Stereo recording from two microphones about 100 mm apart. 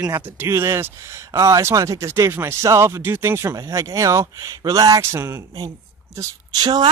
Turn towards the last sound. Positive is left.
turn(degrees=-45)  # may be behind; listen again after turning